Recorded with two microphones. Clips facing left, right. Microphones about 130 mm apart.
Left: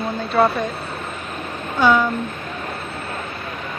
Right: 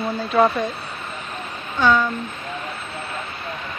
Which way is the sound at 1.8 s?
10° left (ahead or behind).